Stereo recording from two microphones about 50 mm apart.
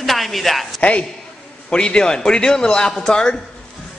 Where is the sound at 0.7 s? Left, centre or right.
Left.